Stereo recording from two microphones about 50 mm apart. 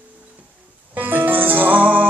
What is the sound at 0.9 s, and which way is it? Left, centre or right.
Music, right.